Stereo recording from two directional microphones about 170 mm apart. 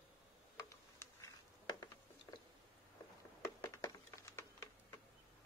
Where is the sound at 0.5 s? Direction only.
15° left (ahead or behind).